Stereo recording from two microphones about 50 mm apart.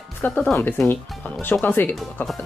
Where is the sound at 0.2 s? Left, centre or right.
Left.